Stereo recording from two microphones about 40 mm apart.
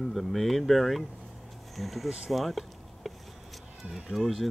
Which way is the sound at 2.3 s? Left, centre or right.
Centre.